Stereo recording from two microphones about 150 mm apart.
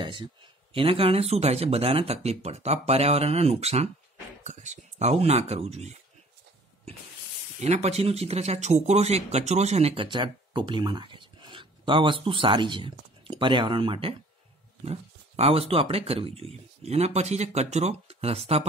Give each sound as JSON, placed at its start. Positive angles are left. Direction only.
{"t": 0.0, "sound": "speech", "side_deg": -30}
{"t": 7.6, "sound": "speech", "side_deg": -45}
{"t": 10.0, "sound": "speech", "side_deg": -30}